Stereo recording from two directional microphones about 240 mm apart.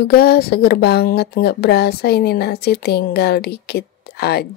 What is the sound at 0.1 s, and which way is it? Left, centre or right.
Speech, left.